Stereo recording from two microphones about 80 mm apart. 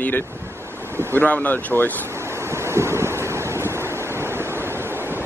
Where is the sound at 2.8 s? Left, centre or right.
Right.